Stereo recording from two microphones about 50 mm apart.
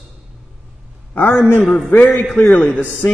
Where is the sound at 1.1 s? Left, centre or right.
Left.